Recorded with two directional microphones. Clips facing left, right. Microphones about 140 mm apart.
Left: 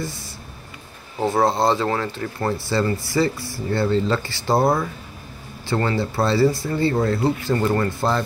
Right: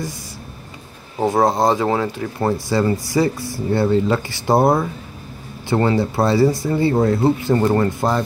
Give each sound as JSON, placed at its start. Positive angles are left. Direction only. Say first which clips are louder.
{"t": 1.2, "sound": "speech", "louder": "right 3 dB", "side_deg": -15}